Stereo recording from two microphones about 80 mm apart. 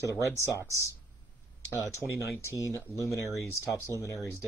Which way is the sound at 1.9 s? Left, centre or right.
Left.